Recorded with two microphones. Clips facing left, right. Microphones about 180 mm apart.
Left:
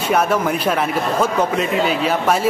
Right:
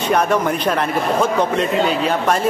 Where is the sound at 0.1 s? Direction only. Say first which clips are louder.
Even; 5° left (ahead or behind).